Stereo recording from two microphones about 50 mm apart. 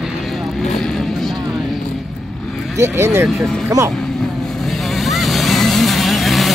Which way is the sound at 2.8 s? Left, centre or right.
Right.